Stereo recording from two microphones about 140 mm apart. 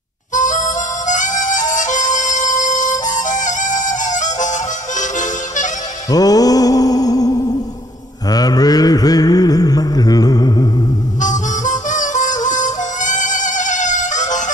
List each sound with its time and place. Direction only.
0.3 s harmonica: 65° left (ahead or behind)
6.0 s music: 25° left (ahead or behind)
8.3 s mantra: 25° left (ahead or behind)
11.1 s music: 65° left (ahead or behind)